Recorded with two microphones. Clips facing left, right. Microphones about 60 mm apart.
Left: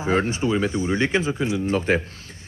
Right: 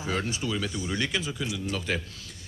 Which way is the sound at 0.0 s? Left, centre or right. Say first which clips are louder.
Left 9 dB; left.